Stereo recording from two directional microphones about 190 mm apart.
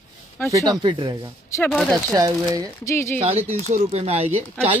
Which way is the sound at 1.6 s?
5° left (ahead or behind).